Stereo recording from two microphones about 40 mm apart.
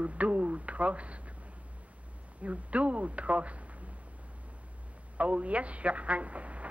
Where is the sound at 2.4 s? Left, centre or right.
Right.